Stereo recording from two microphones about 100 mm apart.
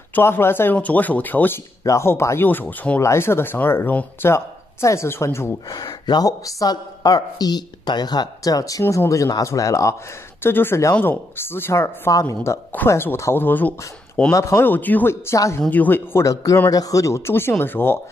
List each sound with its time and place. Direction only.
0.1 s speech: 25° left (ahead or behind)
3.0 s speech: 25° left (ahead or behind)
5.7 s a woman's voice: 45° left (ahead or behind)
10.4 s speech: 20° left (ahead or behind)
14.3 s speech: 25° left (ahead or behind)
15.7 s speech: 20° left (ahead or behind)